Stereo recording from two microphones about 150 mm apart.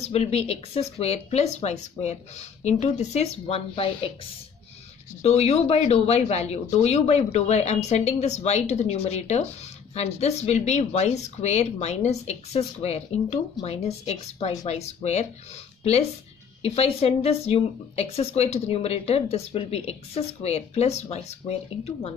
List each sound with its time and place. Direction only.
0.0 s a woman's voice: 45° left (ahead or behind)